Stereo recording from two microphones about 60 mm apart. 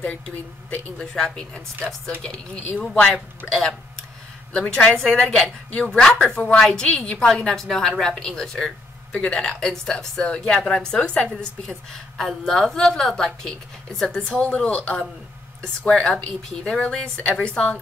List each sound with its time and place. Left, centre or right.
0.7 s speech: left
1.1 s speech: centre
4.6 s speech: centre
9.1 s speech: left
9.4 s speech: centre